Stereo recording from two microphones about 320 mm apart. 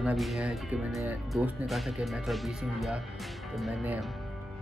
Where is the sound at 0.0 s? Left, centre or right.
Centre.